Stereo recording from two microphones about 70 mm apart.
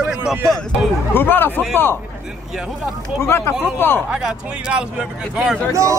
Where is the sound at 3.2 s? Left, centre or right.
Left.